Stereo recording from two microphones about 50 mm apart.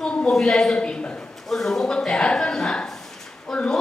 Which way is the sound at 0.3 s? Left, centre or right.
Centre.